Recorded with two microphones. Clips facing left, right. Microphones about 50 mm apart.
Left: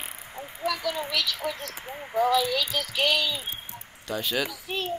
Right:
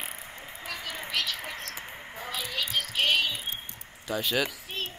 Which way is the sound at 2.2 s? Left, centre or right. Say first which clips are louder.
Left 12 dB; left.